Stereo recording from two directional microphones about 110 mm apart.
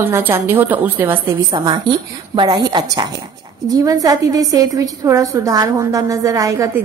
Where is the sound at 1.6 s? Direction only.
45° right (ahead or behind).